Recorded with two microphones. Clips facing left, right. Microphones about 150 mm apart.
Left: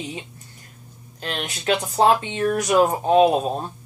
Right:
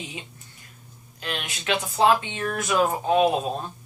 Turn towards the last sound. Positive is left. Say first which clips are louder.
# left 4 dB
turn(degrees=30)  # may be behind; listen again after turning